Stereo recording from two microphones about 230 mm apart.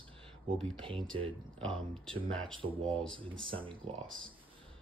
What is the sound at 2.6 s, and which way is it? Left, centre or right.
Speech, right.